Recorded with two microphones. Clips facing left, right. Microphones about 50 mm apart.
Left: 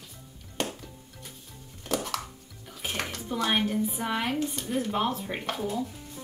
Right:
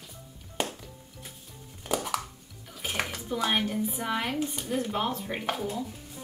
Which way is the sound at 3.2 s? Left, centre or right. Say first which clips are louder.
Left 2 dB; centre.